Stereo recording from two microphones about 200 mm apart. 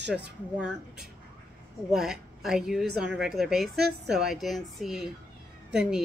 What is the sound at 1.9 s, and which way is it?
A woman's voice, centre (ahead or behind).